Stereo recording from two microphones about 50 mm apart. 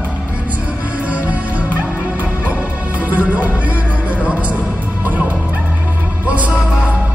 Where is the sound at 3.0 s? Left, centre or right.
Right.